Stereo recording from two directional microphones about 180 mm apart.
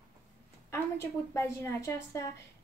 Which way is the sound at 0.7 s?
15° left (ahead or behind).